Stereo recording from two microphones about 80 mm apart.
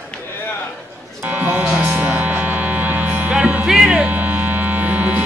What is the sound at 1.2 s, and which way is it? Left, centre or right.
Mains hum, right.